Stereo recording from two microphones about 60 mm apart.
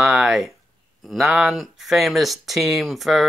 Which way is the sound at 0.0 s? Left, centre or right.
Centre.